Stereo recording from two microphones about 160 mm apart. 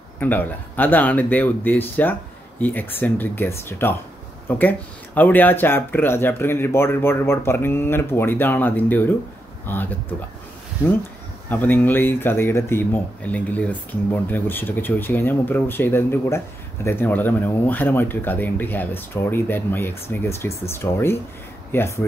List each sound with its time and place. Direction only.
0.2 s speech: 10° left (ahead or behind)
11.4 s speech: 10° left (ahead or behind)